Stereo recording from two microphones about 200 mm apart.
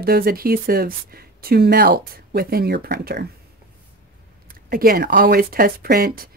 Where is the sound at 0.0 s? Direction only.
50° right (ahead or behind).